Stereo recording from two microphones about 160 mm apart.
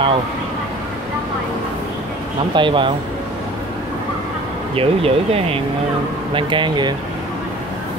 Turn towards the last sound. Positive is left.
turn(degrees=-30)  # may be behind; listen again after turning